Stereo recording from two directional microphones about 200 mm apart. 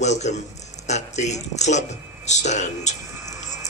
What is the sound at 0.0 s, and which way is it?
Speech, 35° left (ahead or behind).